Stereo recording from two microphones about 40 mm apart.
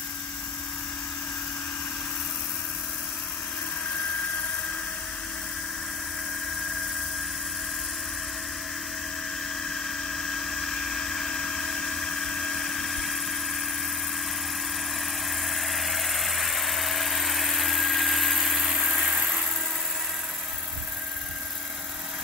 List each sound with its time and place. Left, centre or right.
9.6 s a sound: centre
15.0 s vehicle: centre
19.0 s helicopter: right